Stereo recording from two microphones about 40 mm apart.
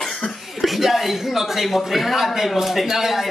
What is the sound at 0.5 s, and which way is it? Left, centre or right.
A man's voice, centre.